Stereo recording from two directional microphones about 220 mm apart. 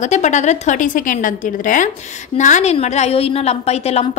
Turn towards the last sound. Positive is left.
turn(degrees=30)  # may be behind; listen again after turning